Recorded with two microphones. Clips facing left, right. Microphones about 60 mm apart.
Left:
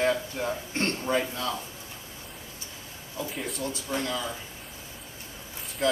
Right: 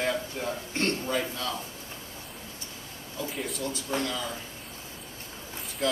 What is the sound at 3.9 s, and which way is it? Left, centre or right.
Speech, centre.